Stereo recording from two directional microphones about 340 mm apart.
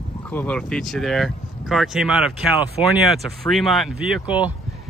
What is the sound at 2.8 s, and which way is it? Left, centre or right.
Speech, centre.